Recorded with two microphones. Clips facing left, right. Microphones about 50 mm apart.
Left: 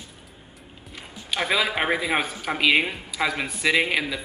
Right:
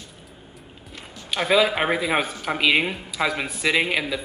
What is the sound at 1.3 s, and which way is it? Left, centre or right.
Speech, centre.